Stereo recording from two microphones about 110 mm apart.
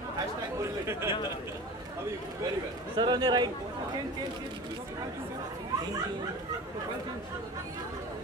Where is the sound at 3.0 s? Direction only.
40° right (ahead or behind).